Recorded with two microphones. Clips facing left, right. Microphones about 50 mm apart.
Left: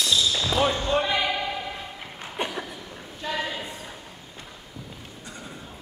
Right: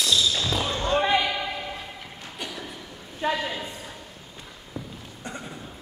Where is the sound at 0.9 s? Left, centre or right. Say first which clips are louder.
Right 4 dB; centre.